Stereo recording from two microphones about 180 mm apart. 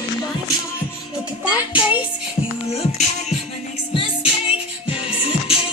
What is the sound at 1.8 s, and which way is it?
Music, 10° right (ahead or behind).